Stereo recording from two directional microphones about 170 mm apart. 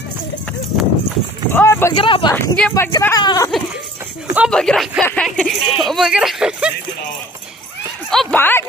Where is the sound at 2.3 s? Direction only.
5° left (ahead or behind).